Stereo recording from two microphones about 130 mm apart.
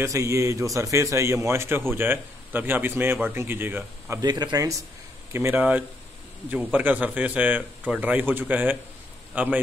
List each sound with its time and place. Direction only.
0.0 s a man's voice: 25° right (ahead or behind)
4.2 s speech: 30° right (ahead or behind)
5.3 s a man's voice: 20° right (ahead or behind)